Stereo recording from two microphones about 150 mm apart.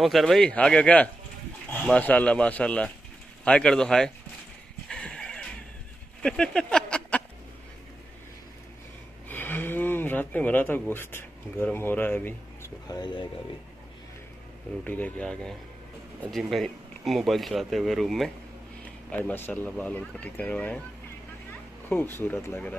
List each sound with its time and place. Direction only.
0.0 s speech: centre (ahead or behind)
4.8 s horse: 5° left (ahead or behind)
6.2 s speech: 5° left (ahead or behind)
9.3 s speech: 15° left (ahead or behind)
12.8 s speech: 25° left (ahead or behind)
14.9 s speech: 10° left (ahead or behind)
21.8 s speech: 15° left (ahead or behind)